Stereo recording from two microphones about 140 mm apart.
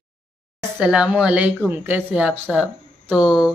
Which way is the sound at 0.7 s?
5° right (ahead or behind).